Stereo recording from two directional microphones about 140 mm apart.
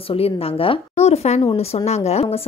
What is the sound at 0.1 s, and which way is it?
A woman's voice, 40° left (ahead or behind).